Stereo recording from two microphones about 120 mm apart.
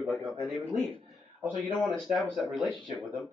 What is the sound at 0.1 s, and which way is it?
Speech, centre (ahead or behind).